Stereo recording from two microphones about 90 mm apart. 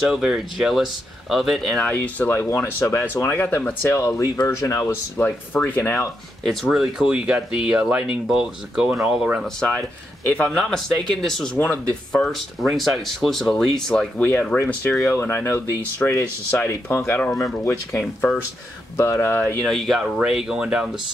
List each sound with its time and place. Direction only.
0.1 s speech: 5° right (ahead or behind)
1.9 s speech: 20° left (ahead or behind)
4.5 s speech: 35° left (ahead or behind)
5.1 s speech: 20° left (ahead or behind)
6.4 s speech: 5° left (ahead or behind)
9.7 s speech: 15° left (ahead or behind)
10.5 s speech: 5° left (ahead or behind)
11.5 s speech: 20° left (ahead or behind)
11.9 s speech: 5° left (ahead or behind); by 16.1 s 20° left (ahead or behind)
16.1 s speech: 30° left (ahead or behind)
17.4 s speech: 35° left (ahead or behind)
19.6 s speech: centre (ahead or behind)